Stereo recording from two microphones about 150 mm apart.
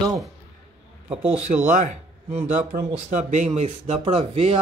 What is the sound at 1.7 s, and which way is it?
Speech, 50° right (ahead or behind).